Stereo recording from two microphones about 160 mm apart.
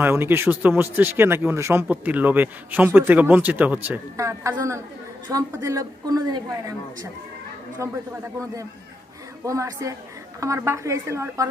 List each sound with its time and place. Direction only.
0.0 s a woman's voice: 15° right (ahead or behind)
7.8 s a woman's voice: 20° right (ahead or behind)